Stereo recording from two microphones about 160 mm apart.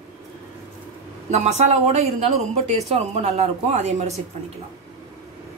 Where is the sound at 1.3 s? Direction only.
45° right (ahead or behind).